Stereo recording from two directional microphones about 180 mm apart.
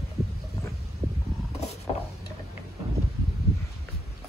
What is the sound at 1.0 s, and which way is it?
Vehicle, 30° right (ahead or behind).